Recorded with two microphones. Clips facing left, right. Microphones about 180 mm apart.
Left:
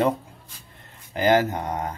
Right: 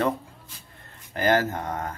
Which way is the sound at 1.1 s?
15° left (ahead or behind).